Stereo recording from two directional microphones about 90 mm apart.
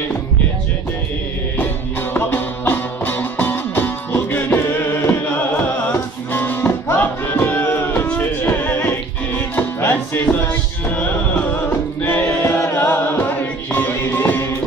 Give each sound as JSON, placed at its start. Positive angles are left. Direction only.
{"t": 2.1, "sound": "music", "side_deg": 25}